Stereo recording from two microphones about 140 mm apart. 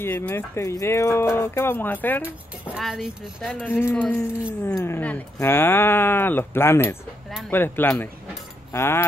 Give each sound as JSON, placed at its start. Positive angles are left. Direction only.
{"t": 0.0, "sound": "speech", "side_deg": 15}
{"t": 2.2, "sound": "speech", "side_deg": -10}
{"t": 3.5, "sound": "speech", "side_deg": 15}
{"t": 7.2, "sound": "a sound", "side_deg": 0}
{"t": 7.5, "sound": "speech", "side_deg": 15}